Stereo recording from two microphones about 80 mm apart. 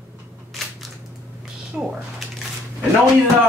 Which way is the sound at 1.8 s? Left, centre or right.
Centre.